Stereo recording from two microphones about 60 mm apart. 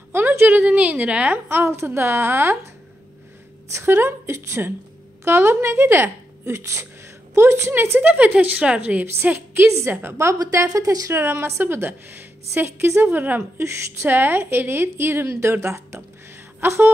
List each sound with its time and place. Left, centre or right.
0.1 s a woman's voice: right
1.5 s a woman's voice: right
3.7 s a woman's voice: right
6.5 s a woman's voice: right
7.7 s a woman's voice: right; by 8.9 s centre
9.3 s a woman's voice: right
10.5 s a woman's voice: right
11.1 s a woman's voice: right
13.0 s a woman's voice: right
13.4 s a woman's voice: right